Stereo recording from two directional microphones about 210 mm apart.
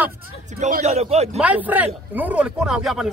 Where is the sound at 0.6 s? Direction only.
35° right (ahead or behind).